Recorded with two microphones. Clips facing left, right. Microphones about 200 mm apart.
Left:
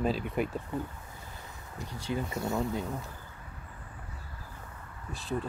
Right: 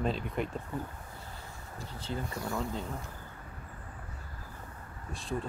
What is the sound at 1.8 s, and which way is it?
Speech, 15° left (ahead or behind).